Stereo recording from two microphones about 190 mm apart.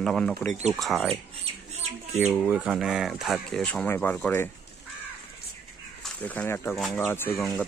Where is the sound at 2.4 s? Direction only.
5° right (ahead or behind).